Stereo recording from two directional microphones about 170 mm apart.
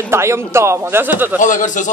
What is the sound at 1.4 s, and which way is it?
Speech, 50° left (ahead or behind).